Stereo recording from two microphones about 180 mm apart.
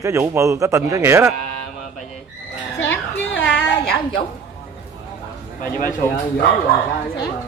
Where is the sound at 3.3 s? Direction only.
70° left (ahead or behind).